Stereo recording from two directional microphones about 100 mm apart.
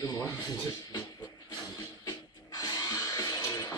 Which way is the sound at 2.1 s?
40° left (ahead or behind).